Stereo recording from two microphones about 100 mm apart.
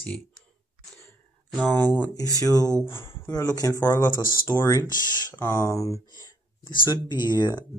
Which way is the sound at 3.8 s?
20° left (ahead or behind).